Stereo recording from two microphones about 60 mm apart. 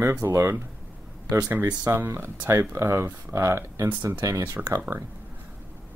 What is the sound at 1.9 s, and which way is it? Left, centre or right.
Speech, right.